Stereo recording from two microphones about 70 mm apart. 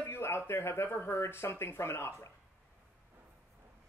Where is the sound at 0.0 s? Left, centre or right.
Left.